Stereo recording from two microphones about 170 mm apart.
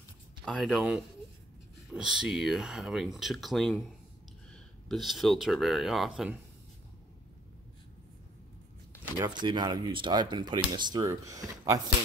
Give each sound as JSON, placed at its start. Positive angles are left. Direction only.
{"t": 0.5, "sound": "speech", "side_deg": 0}
{"t": 4.8, "sound": "speech", "side_deg": 0}
{"t": 9.2, "sound": "speech", "side_deg": -25}